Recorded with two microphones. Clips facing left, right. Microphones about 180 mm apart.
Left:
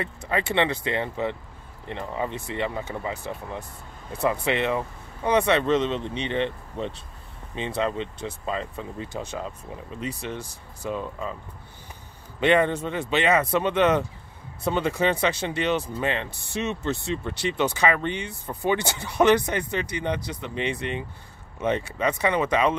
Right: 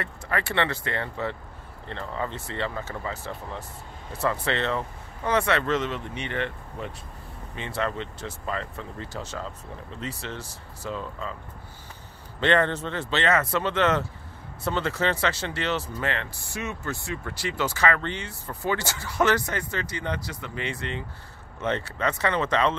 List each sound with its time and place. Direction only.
0.0 s speech: 15° left (ahead or behind)
12.4 s speech: 15° left (ahead or behind)